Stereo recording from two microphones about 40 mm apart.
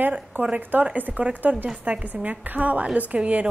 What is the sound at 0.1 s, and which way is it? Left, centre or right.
A woman's voice, right.